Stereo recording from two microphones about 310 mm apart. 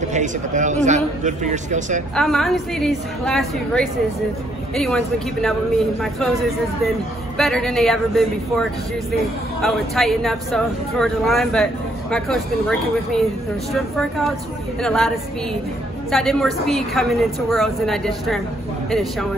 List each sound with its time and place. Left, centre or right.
0.1 s a man's voice: right
2.1 s speech: centre